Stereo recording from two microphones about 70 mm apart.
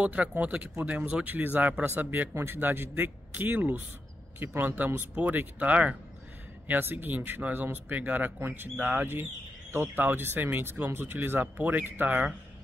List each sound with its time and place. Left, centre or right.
0.0 s speech: centre